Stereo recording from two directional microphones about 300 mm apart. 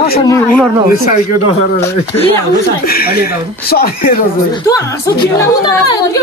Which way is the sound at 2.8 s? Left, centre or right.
Left.